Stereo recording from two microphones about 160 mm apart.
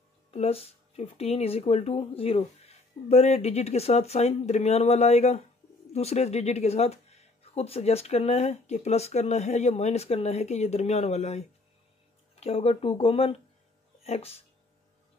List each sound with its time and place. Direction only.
0.3 s speech: 40° left (ahead or behind)